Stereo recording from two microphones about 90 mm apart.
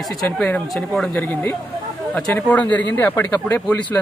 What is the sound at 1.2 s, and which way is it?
Speech, 20° left (ahead or behind).